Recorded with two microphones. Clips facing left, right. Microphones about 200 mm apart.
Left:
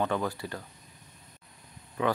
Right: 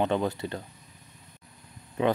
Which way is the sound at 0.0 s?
20° right (ahead or behind).